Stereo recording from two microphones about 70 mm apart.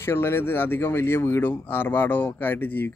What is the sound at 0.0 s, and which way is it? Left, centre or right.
Speech, left.